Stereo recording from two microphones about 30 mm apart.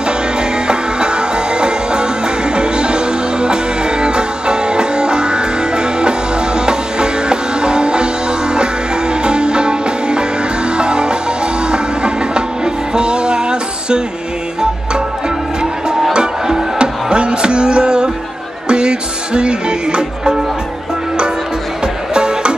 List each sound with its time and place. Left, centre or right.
0.0 s music: right
16.1 s music: right
22.1 s music: right